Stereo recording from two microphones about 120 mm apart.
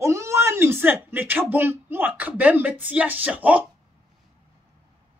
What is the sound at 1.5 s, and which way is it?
Speech, 20° right (ahead or behind).